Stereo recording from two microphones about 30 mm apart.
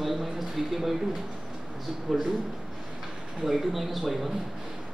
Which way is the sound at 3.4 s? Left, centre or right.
Centre.